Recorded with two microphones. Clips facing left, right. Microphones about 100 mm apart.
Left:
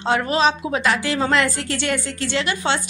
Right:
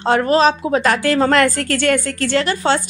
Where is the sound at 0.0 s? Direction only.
40° right (ahead or behind).